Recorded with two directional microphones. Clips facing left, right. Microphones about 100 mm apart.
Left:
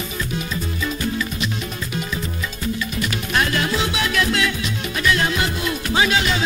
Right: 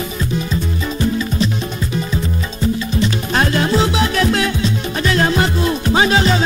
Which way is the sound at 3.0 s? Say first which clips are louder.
Right 4 dB; 30° right (ahead or behind).